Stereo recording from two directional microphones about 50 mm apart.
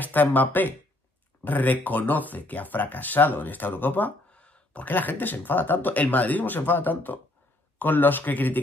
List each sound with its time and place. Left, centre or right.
0.0 s speech: left
4.3 s a sound: left
4.8 s speech: left